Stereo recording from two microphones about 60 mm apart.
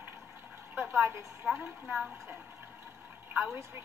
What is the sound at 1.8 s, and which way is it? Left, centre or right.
Speech, centre.